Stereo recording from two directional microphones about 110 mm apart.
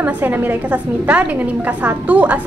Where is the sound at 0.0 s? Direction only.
15° right (ahead or behind).